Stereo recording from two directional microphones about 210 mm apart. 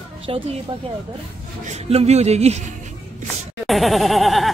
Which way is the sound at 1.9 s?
30° right (ahead or behind).